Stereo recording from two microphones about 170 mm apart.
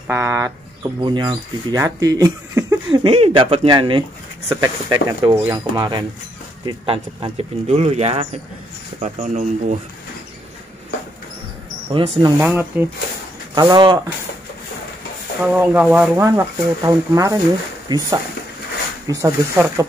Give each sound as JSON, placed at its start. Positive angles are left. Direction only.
{"t": 0.1, "sound": "speech", "side_deg": -15}
{"t": 1.0, "sound": "speech", "side_deg": -25}
{"t": 11.9, "sound": "speech", "side_deg": -30}
{"t": 12.4, "sound": "speech", "side_deg": -10}
{"t": 13.6, "sound": "speech", "side_deg": -25}
{"t": 15.5, "sound": "speech", "side_deg": -10}